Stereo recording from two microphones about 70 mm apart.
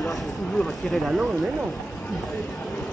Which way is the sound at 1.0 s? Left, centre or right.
Centre.